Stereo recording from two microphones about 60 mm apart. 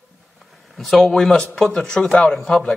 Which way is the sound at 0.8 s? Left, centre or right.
Centre.